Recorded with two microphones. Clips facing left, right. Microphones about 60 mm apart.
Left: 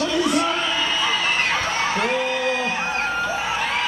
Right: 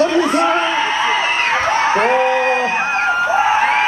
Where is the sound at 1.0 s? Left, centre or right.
Right.